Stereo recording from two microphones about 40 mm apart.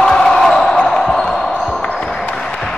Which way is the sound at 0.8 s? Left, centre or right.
Centre.